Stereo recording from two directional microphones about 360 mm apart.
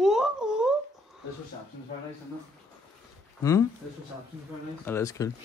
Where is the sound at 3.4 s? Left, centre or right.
Centre.